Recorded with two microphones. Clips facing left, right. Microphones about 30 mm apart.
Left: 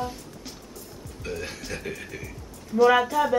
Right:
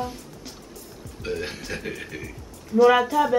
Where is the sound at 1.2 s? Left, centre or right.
Right.